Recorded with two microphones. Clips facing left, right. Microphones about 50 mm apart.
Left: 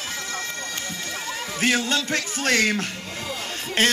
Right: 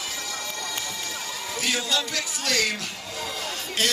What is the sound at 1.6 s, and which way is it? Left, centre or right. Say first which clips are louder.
Speech: left 4 dB; left.